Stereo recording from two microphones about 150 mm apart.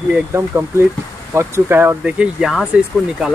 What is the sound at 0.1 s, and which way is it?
Speech, 15° right (ahead or behind).